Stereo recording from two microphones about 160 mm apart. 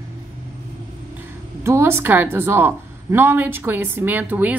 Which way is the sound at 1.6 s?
15° right (ahead or behind).